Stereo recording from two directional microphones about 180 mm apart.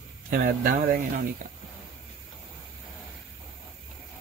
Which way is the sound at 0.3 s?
50° right (ahead or behind).